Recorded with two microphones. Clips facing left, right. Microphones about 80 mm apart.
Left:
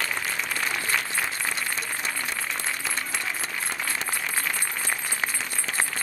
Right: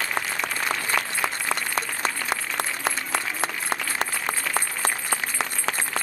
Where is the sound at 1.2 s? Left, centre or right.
Right.